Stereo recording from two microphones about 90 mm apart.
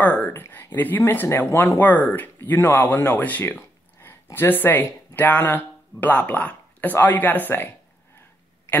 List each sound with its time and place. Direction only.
0.0 s speech: 20° left (ahead or behind)